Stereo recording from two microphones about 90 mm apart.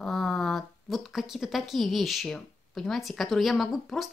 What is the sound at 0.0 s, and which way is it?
Speech, 5° left (ahead or behind).